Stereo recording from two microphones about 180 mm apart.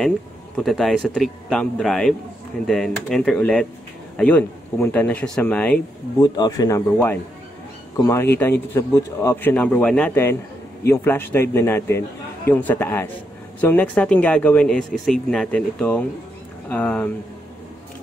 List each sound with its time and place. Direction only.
0.6 s speech: centre (ahead or behind)
6.1 s speech: 20° left (ahead or behind)